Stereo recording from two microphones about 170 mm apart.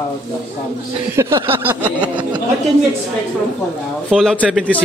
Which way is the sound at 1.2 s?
15° right (ahead or behind).